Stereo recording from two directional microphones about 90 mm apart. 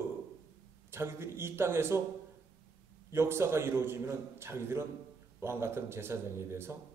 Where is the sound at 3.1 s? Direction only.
30° right (ahead or behind).